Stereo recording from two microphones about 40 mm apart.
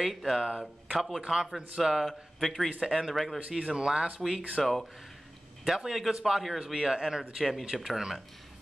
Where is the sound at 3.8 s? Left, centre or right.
Right.